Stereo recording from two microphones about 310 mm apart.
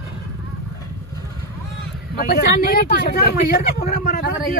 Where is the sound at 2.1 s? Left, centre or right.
Left.